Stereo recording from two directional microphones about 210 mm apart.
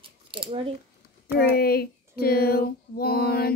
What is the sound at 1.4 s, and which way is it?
Music, 45° left (ahead or behind).